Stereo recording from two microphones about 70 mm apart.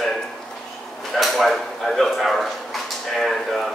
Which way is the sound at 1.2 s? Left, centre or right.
Centre.